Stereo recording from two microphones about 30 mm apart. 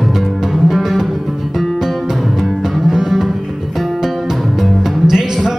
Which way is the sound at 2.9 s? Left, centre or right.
Centre.